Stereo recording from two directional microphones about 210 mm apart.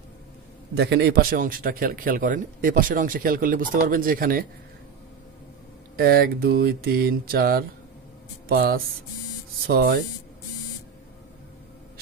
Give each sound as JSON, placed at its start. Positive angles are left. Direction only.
{"t": 0.7, "sound": "a man's voice", "side_deg": -50}
{"t": 5.9, "sound": "a man's voice", "side_deg": -45}